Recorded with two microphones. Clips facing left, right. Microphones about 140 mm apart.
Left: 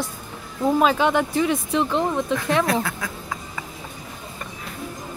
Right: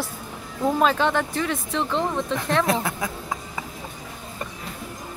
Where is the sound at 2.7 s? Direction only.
20° right (ahead or behind).